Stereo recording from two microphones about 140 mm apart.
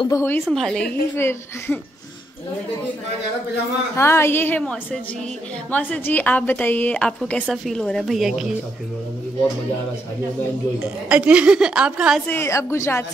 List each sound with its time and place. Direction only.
0.1 s a woman's voice: 15° left (ahead or behind)
0.5 s a woman's voice: centre (ahead or behind)
1.1 s a woman's voice: 15° left (ahead or behind)
3.9 s a woman's voice: 20° left (ahead or behind); by 8.5 s 5° right (ahead or behind)
10.8 s a woman's voice: 10° right (ahead or behind)
12.3 s a woman's voice: 20° left (ahead or behind)